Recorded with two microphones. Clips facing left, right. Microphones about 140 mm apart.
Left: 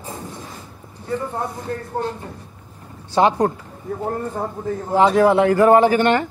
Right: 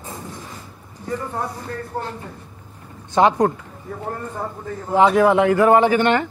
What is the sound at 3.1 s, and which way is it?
Speech, 30° left (ahead or behind).